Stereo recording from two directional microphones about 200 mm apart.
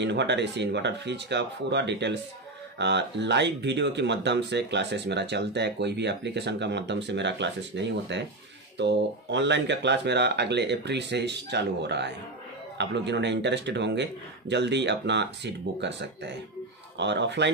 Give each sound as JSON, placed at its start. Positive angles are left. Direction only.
{"t": 0.0, "sound": "speech", "side_deg": -60}